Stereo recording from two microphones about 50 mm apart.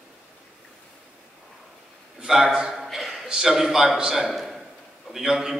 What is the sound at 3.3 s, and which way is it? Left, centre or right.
A man's voice, centre.